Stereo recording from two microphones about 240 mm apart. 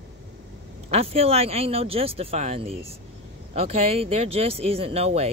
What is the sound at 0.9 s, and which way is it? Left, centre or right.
Speech, right.